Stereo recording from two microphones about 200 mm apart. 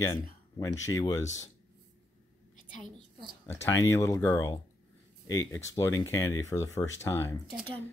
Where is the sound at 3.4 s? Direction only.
15° left (ahead or behind).